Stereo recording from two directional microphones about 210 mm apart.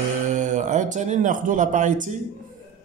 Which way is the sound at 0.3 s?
35° right (ahead or behind).